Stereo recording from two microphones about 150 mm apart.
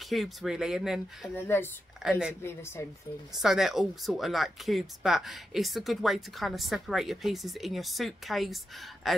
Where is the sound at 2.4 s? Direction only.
15° left (ahead or behind).